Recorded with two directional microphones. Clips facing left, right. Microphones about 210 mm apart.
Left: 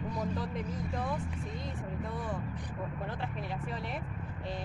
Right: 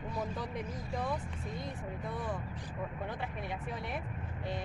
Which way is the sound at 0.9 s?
Centre (ahead or behind).